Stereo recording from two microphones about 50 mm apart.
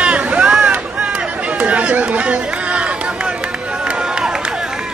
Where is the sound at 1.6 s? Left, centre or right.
Right.